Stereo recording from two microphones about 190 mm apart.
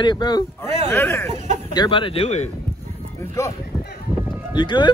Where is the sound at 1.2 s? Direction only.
35° right (ahead or behind).